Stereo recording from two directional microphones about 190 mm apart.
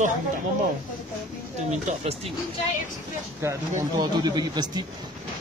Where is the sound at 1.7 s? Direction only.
30° right (ahead or behind).